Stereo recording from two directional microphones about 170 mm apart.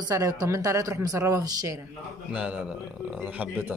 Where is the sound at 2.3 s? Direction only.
5° right (ahead or behind).